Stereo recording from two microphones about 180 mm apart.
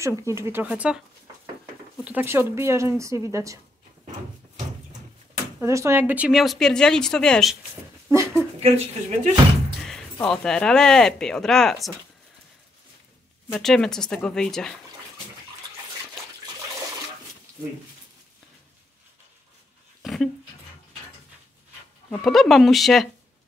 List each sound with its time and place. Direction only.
0.0 s speech: 15° right (ahead or behind)
5.6 s speech: 15° right (ahead or behind); by 7.5 s 5° left (ahead or behind)
8.5 s speech: 35° right (ahead or behind)
9.8 s speech: 5° left (ahead or behind)
13.6 s speech: 5° left (ahead or behind)
20.0 s dog: centre (ahead or behind)
22.1 s speech: centre (ahead or behind)